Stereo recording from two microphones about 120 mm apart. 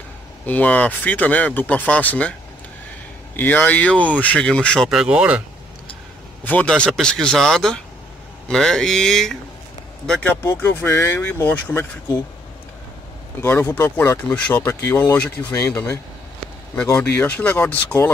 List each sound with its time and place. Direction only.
0.5 s speech: 10° left (ahead or behind)
3.3 s speech: 15° left (ahead or behind); by 5.4 s 10° right (ahead or behind)
6.4 s speech: 10° left (ahead or behind)
10.2 s speech: 15° left (ahead or behind)
13.4 s speech: 20° left (ahead or behind)
16.9 s speech: 10° left (ahead or behind)